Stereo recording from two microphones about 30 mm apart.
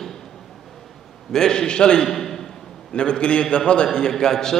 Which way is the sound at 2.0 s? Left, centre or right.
Centre.